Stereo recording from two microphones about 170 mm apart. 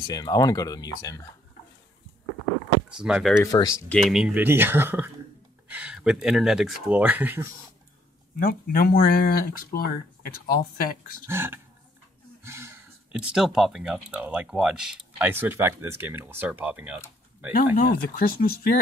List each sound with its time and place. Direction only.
0.0 s speech: 25° left (ahead or behind)
2.9 s speech: 5° right (ahead or behind)
3.3 s speech: 20° left (ahead or behind)
3.9 s speech: centre (ahead or behind)
8.4 s speech: 60° left (ahead or behind)
11.2 s speech: 15° right (ahead or behind)
17.7 s speech: 60° left (ahead or behind)